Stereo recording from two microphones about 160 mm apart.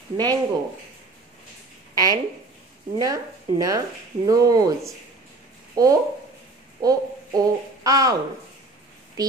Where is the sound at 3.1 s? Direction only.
20° right (ahead or behind).